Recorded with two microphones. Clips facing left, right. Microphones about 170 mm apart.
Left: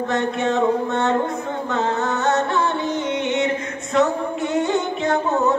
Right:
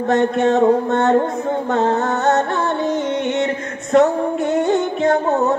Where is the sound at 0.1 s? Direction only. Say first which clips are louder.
Right 7 dB; 50° right (ahead or behind).